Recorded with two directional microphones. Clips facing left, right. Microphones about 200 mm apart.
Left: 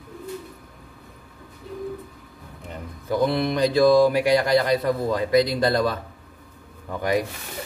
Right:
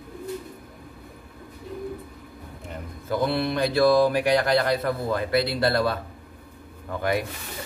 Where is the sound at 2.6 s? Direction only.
15° left (ahead or behind).